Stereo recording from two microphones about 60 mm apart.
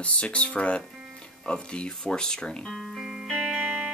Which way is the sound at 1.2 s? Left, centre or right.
Centre.